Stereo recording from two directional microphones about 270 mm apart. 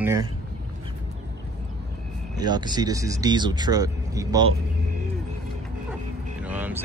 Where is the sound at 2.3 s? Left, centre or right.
Centre.